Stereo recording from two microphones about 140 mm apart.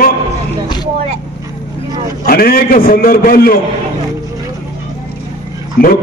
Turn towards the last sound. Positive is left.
turn(degrees=90)